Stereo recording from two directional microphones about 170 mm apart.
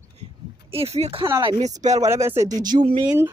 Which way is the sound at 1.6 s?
45° right (ahead or behind).